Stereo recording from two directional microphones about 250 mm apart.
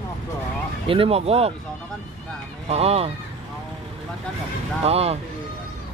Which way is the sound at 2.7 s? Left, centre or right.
Right.